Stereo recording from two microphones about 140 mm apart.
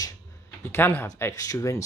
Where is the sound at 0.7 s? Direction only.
15° left (ahead or behind).